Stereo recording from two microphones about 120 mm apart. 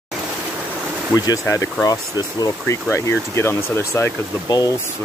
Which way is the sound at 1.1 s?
30° left (ahead or behind).